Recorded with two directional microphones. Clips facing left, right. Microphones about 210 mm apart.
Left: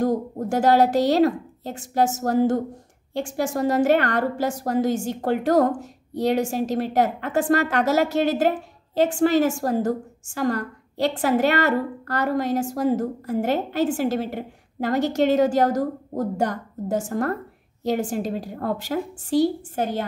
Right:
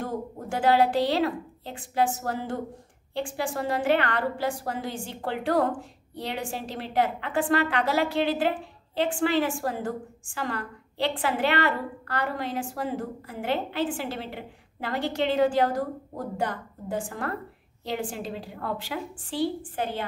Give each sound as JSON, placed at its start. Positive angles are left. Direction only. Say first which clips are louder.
{"t": 0.0, "sound": "a woman's voice", "louder": "left 9 dB", "side_deg": 40}